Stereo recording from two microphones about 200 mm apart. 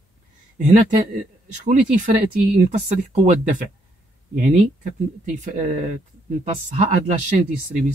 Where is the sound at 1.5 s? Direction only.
40° right (ahead or behind).